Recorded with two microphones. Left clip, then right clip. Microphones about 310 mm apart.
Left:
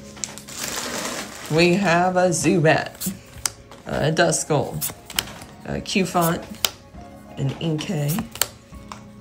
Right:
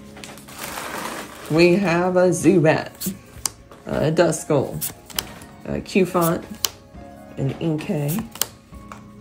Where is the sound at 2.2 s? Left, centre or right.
Left.